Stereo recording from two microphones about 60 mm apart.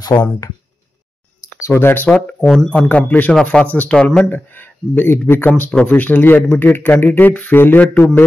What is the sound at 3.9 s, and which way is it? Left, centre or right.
Speech, centre.